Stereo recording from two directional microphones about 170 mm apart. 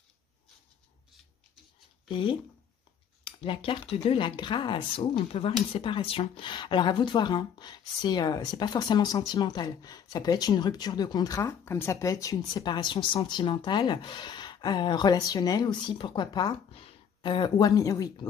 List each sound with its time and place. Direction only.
2.0 s speech: 30° left (ahead or behind)